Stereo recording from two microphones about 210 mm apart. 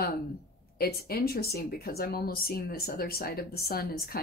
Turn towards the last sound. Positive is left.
turn(degrees=45)  # may be behind; listen again after turning